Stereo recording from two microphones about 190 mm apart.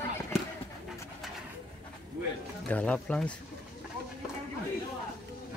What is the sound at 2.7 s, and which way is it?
Speech, 5° left (ahead or behind).